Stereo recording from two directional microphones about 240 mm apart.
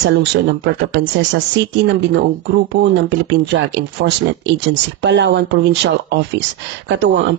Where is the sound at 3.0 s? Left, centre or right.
Right.